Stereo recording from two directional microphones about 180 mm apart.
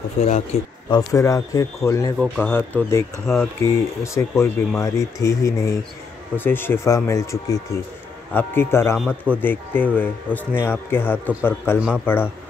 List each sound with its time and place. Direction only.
0.2 s speech: 40° left (ahead or behind)
0.8 s speech: 20° left (ahead or behind)
8.9 s a man's voice: 5° right (ahead or behind)
9.4 s speech: 10° left (ahead or behind)